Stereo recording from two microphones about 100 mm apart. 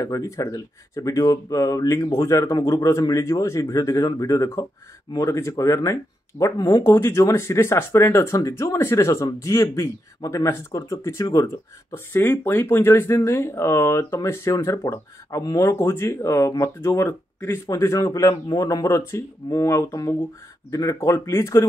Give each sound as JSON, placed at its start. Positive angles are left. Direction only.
{"t": 0.0, "sound": "a man's voice", "side_deg": 35}
{"t": 6.8, "sound": "a man's voice", "side_deg": 25}